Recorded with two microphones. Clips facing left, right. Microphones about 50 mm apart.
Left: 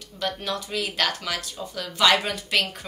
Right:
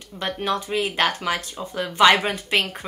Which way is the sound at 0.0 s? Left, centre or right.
Right.